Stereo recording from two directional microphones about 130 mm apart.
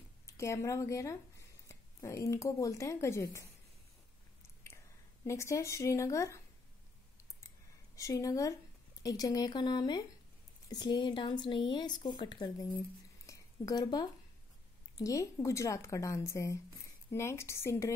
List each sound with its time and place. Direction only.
0.3 s speech: 20° left (ahead or behind)
5.2 s speech: 25° left (ahead or behind)
7.9 s speech: 25° left (ahead or behind)
13.3 s a sound: 30° left (ahead or behind)
15.0 s speech: 25° left (ahead or behind)